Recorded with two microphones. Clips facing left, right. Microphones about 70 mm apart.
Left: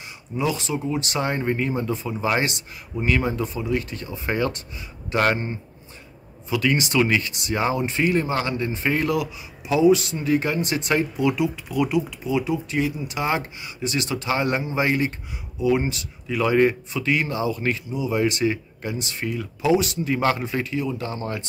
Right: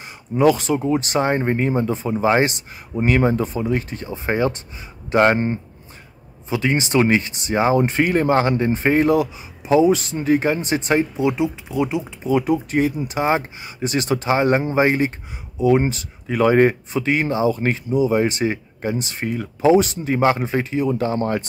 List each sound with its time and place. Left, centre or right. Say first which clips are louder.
0.4 s speech: right 9 dB; right
7.7 s speech: right 4 dB; right
12.2 s speech: right 5 dB; right
13.2 s speech: right 5 dB; right